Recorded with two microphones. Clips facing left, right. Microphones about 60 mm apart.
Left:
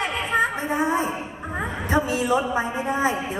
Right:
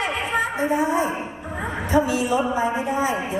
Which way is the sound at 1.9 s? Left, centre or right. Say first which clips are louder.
Right 1 dB; left.